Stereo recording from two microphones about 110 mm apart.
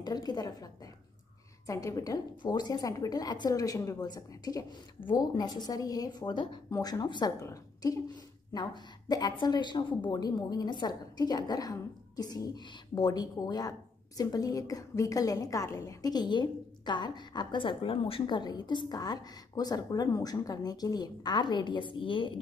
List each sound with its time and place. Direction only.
0.0 s a woman's voice: 40° left (ahead or behind)
1.7 s a woman's voice: 30° left (ahead or behind)
9.4 s a woman's voice: 45° left (ahead or behind)